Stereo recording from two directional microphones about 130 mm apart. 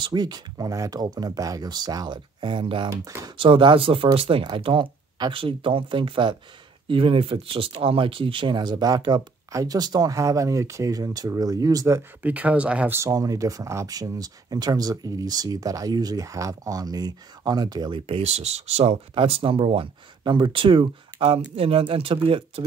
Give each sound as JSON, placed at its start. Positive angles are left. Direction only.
{"t": 0.0, "sound": "speech", "side_deg": -35}
{"t": 12.2, "sound": "speech", "side_deg": -10}
{"t": 13.1, "sound": "speech", "side_deg": -25}